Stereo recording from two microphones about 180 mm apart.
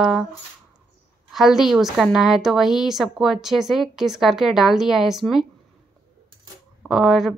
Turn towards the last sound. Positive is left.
turn(degrees=0)  # may be behind; listen again after turning